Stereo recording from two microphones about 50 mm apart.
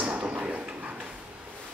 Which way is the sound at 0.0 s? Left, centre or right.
Right.